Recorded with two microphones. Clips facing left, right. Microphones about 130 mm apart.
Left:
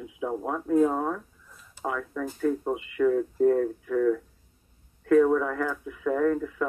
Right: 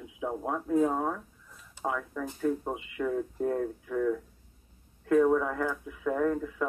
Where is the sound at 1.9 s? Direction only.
10° right (ahead or behind).